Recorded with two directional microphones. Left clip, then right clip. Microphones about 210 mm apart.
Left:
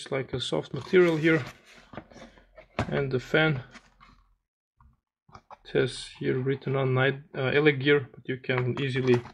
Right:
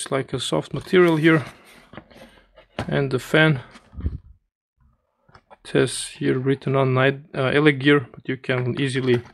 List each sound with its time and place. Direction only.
0.0 s speech: 35° right (ahead or behind)
2.9 s speech: 40° right (ahead or behind)
5.6 s speech: 40° right (ahead or behind)